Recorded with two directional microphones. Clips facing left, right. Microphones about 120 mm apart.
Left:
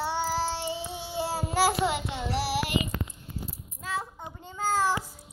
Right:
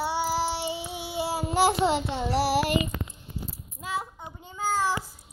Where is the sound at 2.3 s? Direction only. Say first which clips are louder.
Right 5 dB; 45° right (ahead or behind).